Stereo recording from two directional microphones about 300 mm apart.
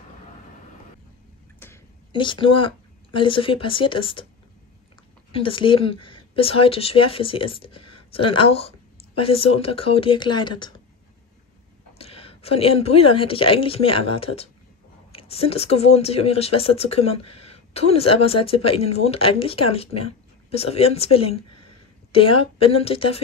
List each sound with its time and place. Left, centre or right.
1.6 s a woman's voice: centre
5.3 s speech: centre
12.0 s speech: centre